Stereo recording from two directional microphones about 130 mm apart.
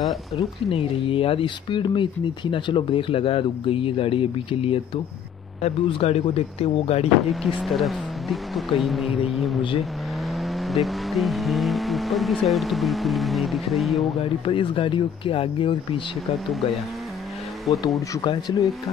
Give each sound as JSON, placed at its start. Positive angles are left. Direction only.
{"t": 0.4, "sound": "speech", "side_deg": 45}
{"t": 7.2, "sound": "speech", "side_deg": 0}
{"t": 14.4, "sound": "speech", "side_deg": 40}
{"t": 17.8, "sound": "speech", "side_deg": 35}